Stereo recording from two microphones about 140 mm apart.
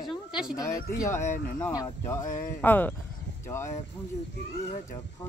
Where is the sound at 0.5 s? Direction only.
20° left (ahead or behind).